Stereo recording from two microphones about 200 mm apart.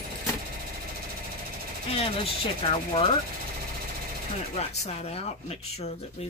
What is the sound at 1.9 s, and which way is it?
Speech, 30° left (ahead or behind).